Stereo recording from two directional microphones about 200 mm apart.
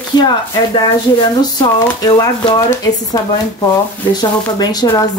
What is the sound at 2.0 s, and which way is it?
Speech, 20° left (ahead or behind).